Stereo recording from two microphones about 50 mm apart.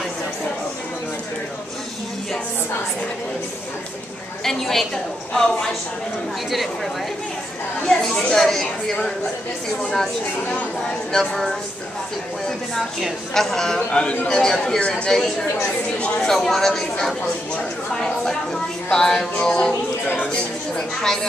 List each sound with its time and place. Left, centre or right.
4.5 s a woman's voice: centre
7.8 s speech: centre
8.4 s speech: centre
11.1 s a woman's voice: centre
13.3 s a woman's voice: centre
13.8 s a woman's voice: left
16.2 s a woman's voice: centre
21.0 s a woman's voice: centre